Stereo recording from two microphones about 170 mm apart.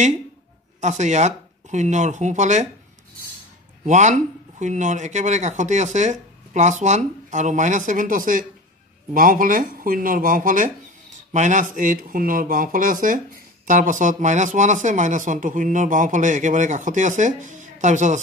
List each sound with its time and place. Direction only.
0.7 s speech: 40° right (ahead or behind)
3.8 s speech: 45° right (ahead or behind)